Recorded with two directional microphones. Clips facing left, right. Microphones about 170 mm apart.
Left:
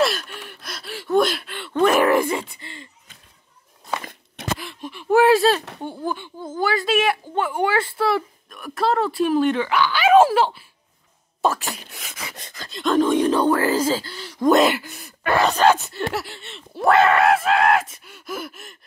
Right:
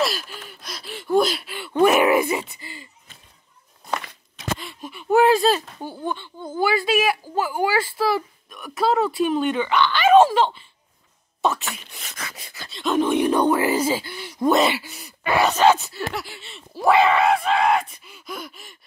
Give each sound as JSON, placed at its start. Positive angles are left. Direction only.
{"t": 0.0, "sound": "gasp", "side_deg": 0}
{"t": 2.6, "sound": "a sound", "side_deg": -5}
{"t": 4.0, "sound": "a sound", "side_deg": 50}
{"t": 4.6, "sound": "gasp", "side_deg": 0}
{"t": 5.8, "sound": "speech", "side_deg": 0}
{"t": 11.7, "sound": "beatboxing", "side_deg": 0}
{"t": 12.4, "sound": "speech", "side_deg": -5}
{"t": 14.5, "sound": "speech", "side_deg": 0}